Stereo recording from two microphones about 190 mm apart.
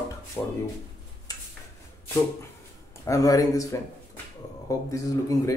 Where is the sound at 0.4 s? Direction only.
15° left (ahead or behind).